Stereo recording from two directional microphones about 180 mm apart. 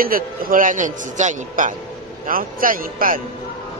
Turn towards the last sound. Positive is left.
turn(degrees=-50)  # may be behind; listen again after turning